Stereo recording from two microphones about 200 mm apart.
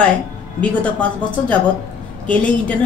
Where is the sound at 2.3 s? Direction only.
5° left (ahead or behind).